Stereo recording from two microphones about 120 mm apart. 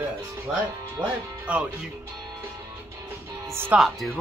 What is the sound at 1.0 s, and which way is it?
Speech, 10° right (ahead or behind).